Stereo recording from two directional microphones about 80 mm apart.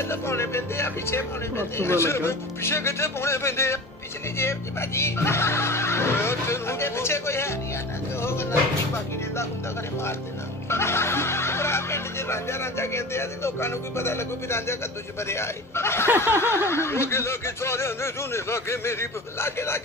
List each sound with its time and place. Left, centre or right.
0.0 s speech: left
8.2 s music: left
10.7 s speech: left